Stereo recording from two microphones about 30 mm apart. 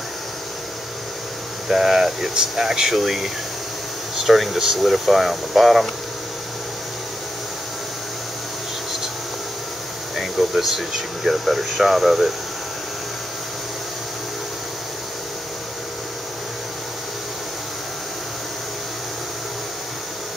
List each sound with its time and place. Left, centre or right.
1.7 s speech: centre
10.1 s speech: centre